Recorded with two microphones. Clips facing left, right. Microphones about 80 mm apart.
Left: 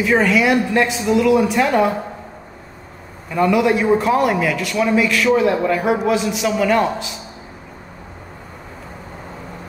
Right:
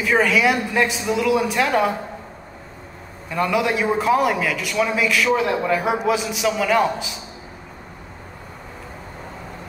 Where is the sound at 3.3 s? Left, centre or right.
Centre.